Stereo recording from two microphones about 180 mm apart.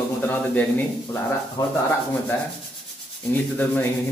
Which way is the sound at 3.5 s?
10° left (ahead or behind).